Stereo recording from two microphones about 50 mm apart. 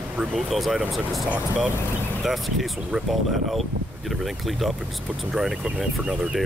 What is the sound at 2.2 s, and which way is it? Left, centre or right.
Speech, centre.